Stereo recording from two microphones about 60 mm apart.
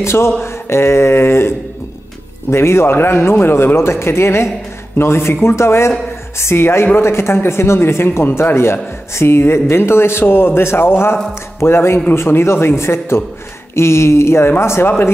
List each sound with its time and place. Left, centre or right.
0.0 s speech: left
2.5 s speech: left